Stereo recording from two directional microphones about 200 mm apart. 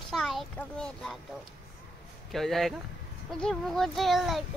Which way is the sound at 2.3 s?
Centre (ahead or behind).